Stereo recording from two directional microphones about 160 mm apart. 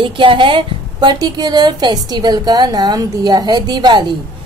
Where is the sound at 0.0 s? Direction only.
30° right (ahead or behind).